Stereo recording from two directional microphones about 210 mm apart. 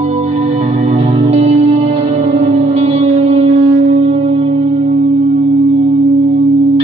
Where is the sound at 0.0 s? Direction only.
30° right (ahead or behind).